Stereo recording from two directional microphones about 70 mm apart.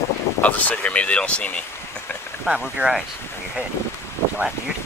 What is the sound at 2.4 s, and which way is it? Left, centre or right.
Speech, centre.